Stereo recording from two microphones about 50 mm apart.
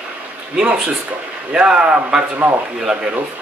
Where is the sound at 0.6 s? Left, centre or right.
Right.